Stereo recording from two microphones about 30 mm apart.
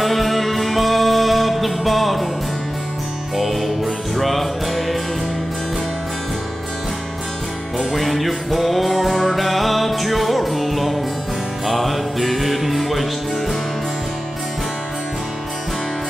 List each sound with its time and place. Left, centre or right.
0.0 s music: centre
3.3 s music: centre
7.7 s music: centre